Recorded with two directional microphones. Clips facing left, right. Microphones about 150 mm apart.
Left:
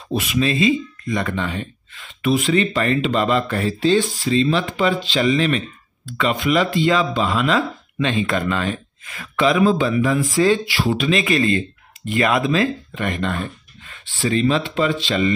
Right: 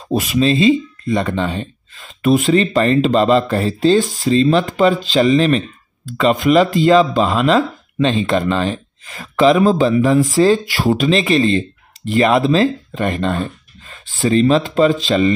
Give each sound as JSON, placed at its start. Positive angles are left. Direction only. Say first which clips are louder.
{"t": 0.1, "sound": "speech", "louder": "right 5 dB", "side_deg": -35}